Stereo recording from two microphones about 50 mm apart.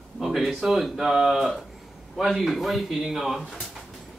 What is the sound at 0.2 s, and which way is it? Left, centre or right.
A man's voice, centre.